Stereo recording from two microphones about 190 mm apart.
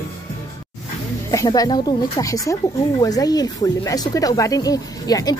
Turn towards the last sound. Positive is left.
turn(degrees=20)  # may be behind; listen again after turning